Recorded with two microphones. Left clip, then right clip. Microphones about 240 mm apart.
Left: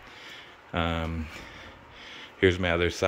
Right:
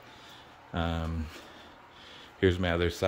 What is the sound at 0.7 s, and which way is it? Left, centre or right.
Speech, centre.